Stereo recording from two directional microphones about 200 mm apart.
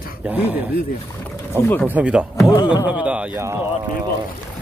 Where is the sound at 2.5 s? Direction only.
25° left (ahead or behind).